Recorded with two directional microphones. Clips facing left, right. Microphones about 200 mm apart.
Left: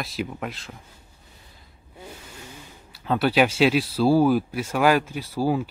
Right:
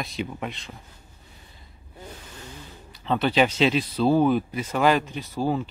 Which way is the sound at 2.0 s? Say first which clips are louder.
Even; 10° left (ahead or behind).